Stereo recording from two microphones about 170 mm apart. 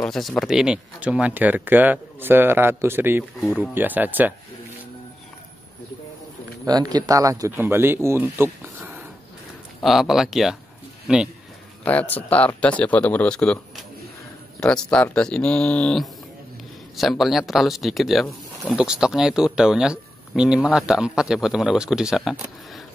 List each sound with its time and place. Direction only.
0.0 s speech: 5° left (ahead or behind)
3.3 s speech: centre (ahead or behind)
3.7 s speech: 10° right (ahead or behind)
6.6 s speech: 20° right (ahead or behind); by 10.6 s centre (ahead or behind)
11.8 s speech: 10° left (ahead or behind)